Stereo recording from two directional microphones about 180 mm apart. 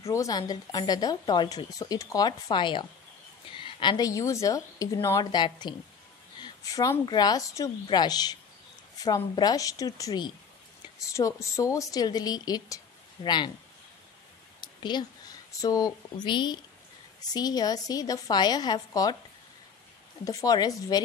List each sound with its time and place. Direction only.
0.1 s a woman's voice: 20° left (ahead or behind)
14.6 s speech: 25° left (ahead or behind)
20.2 s speech: 20° left (ahead or behind)